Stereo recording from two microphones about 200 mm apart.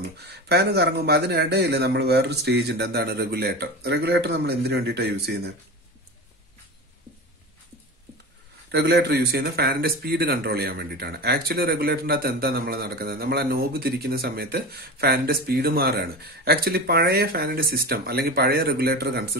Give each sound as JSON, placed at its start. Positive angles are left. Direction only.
{"t": 0.3, "sound": "a man's voice", "side_deg": -55}
{"t": 8.7, "sound": "speech", "side_deg": -55}